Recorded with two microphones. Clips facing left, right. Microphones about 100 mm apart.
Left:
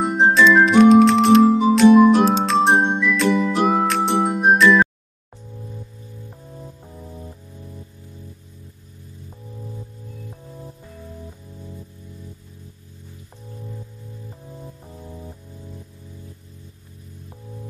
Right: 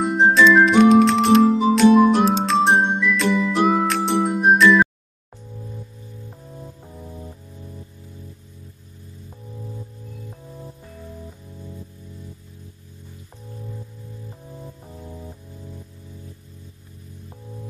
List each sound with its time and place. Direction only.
0.2 s music: centre (ahead or behind)
6.5 s music: centre (ahead or behind)
11.2 s music: 5° left (ahead or behind)
14.5 s music: centre (ahead or behind)